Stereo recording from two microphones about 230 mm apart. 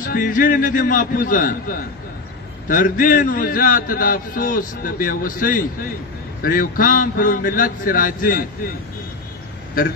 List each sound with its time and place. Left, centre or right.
0.0 s a man's voice: left